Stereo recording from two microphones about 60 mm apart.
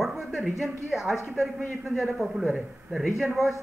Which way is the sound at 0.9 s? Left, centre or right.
Centre.